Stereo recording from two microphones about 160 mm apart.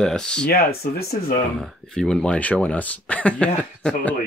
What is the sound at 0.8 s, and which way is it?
Speech, 75° left (ahead or behind).